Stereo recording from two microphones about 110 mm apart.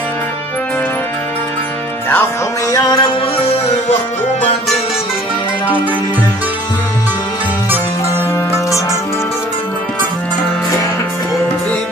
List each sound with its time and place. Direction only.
2.7 s music: 35° left (ahead or behind)